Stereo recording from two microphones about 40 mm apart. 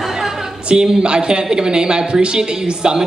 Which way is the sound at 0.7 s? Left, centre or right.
Right.